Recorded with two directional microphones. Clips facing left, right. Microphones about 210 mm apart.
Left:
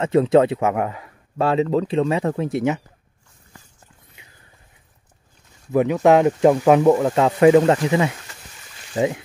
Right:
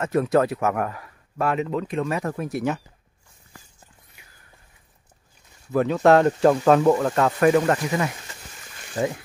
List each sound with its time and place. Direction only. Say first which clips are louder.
0.0 s speech: left 5 dB; 25° left (ahead or behind)
5.7 s speech: left 2 dB; 15° left (ahead or behind)